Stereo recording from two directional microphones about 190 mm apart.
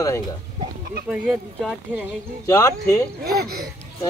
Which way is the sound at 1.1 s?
5° right (ahead or behind).